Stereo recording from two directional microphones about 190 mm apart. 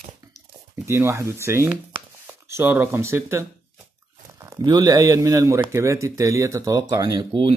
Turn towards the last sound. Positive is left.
turn(degrees=-25)  # may be behind; listen again after turning